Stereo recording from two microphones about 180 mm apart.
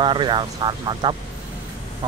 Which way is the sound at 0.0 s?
25° right (ahead or behind).